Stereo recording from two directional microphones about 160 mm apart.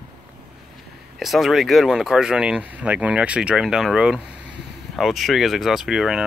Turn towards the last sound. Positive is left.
turn(degrees=-5)  # may be behind; listen again after turning